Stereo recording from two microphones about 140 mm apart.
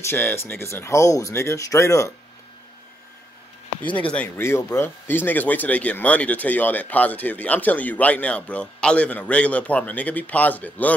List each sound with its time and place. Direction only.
0.1 s speech: 15° left (ahead or behind)
3.8 s speech: 10° left (ahead or behind)